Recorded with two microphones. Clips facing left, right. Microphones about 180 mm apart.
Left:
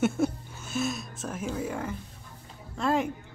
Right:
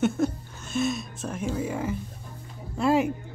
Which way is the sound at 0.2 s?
5° left (ahead or behind).